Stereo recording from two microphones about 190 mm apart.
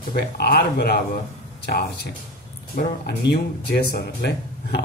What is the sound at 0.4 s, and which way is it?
Speech, 55° left (ahead or behind).